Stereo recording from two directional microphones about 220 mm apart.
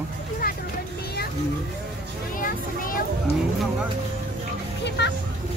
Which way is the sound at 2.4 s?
40° left (ahead or behind).